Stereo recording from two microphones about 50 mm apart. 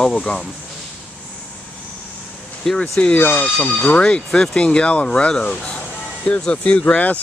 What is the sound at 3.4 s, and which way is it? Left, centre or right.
Speech, left.